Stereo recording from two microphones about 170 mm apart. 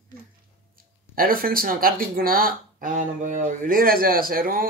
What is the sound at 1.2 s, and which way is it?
Speech, 60° right (ahead or behind).